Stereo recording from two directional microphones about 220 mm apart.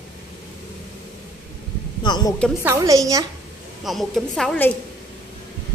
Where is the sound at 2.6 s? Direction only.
15° right (ahead or behind).